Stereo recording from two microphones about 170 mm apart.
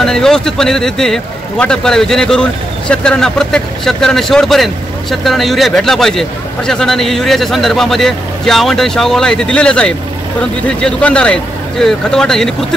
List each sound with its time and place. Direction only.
0.0 s a man's voice: 5° left (ahead or behind)